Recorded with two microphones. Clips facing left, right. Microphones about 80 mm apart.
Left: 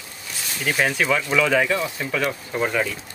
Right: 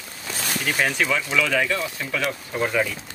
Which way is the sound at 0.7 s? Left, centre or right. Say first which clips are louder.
Left 3 dB; centre.